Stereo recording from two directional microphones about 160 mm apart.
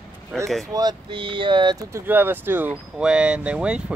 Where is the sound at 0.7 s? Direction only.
25° right (ahead or behind).